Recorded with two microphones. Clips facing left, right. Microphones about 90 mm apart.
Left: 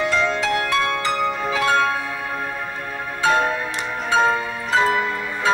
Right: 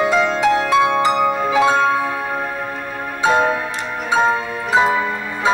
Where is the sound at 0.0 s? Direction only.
15° right (ahead or behind).